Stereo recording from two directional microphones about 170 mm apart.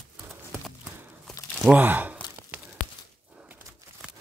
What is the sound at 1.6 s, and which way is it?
Speech, 10° right (ahead or behind).